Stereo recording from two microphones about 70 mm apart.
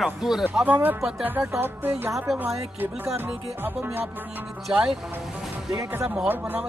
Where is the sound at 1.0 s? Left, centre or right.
Centre.